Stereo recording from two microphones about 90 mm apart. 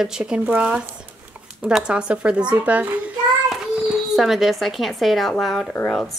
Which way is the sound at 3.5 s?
5° right (ahead or behind).